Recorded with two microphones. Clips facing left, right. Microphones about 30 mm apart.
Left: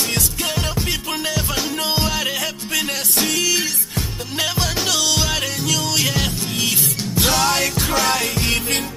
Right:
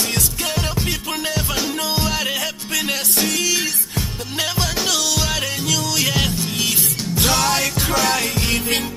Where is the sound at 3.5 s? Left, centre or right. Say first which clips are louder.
Left 1 dB; centre.